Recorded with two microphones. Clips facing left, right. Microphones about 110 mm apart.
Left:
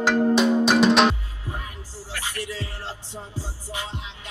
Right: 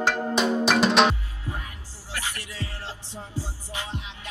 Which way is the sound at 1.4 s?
20° left (ahead or behind).